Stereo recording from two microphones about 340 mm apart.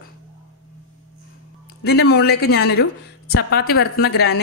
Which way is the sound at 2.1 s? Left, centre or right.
Left.